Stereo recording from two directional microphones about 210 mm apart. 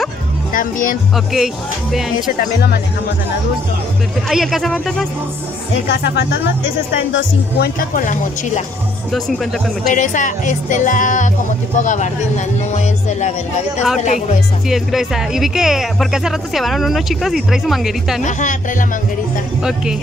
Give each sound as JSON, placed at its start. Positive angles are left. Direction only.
{"t": 0.5, "sound": "speech", "side_deg": 40}
{"t": 1.1, "sound": "speech", "side_deg": 0}
{"t": 2.3, "sound": "speech", "side_deg": 50}
{"t": 4.3, "sound": "speech", "side_deg": 0}
{"t": 5.9, "sound": "speech", "side_deg": 55}
{"t": 9.1, "sound": "speech", "side_deg": 0}
{"t": 9.8, "sound": "speech", "side_deg": 35}
{"t": 14.0, "sound": "speech", "side_deg": 35}
{"t": 14.7, "sound": "speech", "side_deg": 0}
{"t": 18.2, "sound": "speech", "side_deg": 35}
{"t": 19.6, "sound": "speech", "side_deg": -5}